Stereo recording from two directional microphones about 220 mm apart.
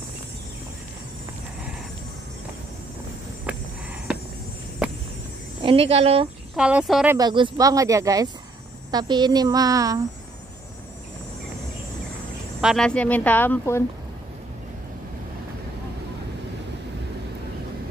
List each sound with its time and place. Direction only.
5.6 s speech: 25° right (ahead or behind)
6.5 s speech: 5° right (ahead or behind)
7.2 s speech: 20° right (ahead or behind)
12.5 s speech: centre (ahead or behind)